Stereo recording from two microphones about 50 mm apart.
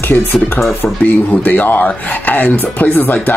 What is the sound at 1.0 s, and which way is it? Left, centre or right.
Speech, left.